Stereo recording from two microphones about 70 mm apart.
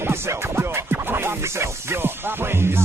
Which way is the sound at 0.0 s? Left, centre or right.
Right.